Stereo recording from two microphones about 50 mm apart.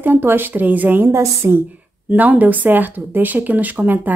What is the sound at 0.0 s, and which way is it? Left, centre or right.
A woman's voice, right.